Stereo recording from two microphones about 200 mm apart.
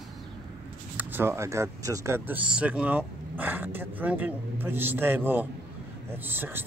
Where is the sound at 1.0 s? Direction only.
10° right (ahead or behind).